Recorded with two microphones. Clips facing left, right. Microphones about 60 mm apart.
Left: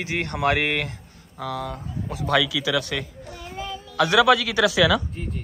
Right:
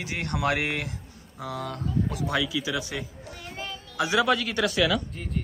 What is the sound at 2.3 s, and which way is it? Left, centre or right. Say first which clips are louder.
A man's voice: left 5 dB; left.